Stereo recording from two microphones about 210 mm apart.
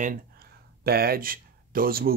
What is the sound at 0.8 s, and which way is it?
Speech, 45° right (ahead or behind).